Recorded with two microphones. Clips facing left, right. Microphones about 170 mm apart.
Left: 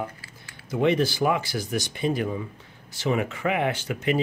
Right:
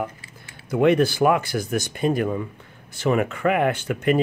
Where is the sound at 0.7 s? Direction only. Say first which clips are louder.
Right 4 dB; 55° right (ahead or behind).